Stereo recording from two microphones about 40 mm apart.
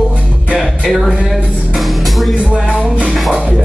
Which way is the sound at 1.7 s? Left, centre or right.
Centre.